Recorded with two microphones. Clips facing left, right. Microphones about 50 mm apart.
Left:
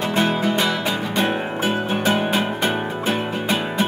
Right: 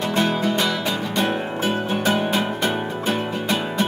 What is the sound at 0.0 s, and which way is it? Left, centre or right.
Music, centre.